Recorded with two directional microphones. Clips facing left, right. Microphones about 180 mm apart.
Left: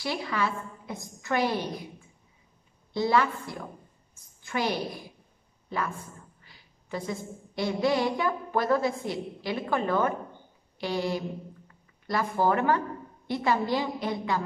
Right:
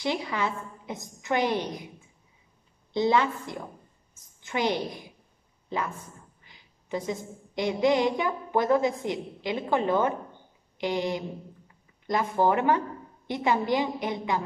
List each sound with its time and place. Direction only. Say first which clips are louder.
0.0 s a woman's voice: right 1 dB; 20° right (ahead or behind)
2.9 s a woman's voice: right 1 dB; 20° right (ahead or behind)